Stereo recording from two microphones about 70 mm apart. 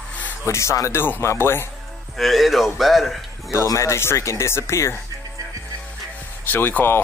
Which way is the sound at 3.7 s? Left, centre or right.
Left.